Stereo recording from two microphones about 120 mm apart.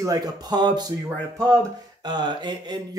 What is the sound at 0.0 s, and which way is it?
Speech, 35° right (ahead or behind).